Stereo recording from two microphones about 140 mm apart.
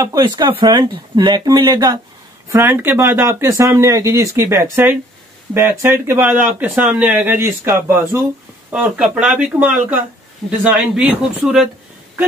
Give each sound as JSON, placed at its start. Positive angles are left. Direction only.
{"t": 0.0, "sound": "speech", "side_deg": -30}
{"t": 2.5, "sound": "speech", "side_deg": -15}
{"t": 8.7, "sound": "speech", "side_deg": -5}